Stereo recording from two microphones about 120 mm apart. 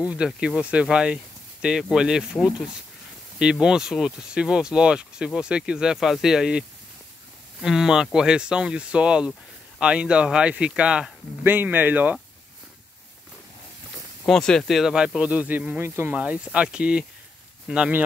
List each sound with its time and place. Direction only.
0.0 s speech: 10° right (ahead or behind)
7.6 s speech: 5° right (ahead or behind)
14.2 s speech: 5° left (ahead or behind); by 16.2 s 20° right (ahead or behind)
16.2 s speech: 10° right (ahead or behind)